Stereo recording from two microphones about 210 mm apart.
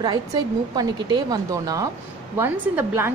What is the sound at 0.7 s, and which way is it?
A woman's voice, 20° right (ahead or behind).